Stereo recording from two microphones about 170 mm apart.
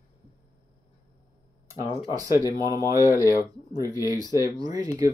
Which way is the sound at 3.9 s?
20° left (ahead or behind).